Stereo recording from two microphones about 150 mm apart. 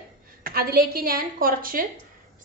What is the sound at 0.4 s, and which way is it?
A woman's voice, 80° right.